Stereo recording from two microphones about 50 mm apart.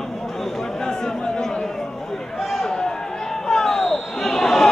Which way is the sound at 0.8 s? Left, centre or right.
Centre.